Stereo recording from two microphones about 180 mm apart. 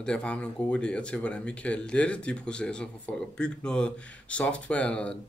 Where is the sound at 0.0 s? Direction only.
5° left (ahead or behind).